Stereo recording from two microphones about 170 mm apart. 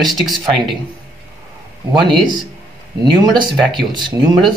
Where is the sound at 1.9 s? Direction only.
25° right (ahead or behind).